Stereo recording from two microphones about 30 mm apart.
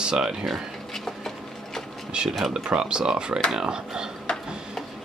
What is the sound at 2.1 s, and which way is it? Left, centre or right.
Speech, right.